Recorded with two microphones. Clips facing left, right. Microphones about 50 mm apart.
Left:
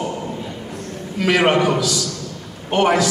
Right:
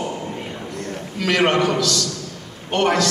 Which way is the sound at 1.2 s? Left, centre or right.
Centre.